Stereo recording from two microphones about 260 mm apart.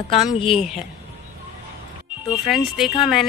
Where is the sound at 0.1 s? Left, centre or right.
Left.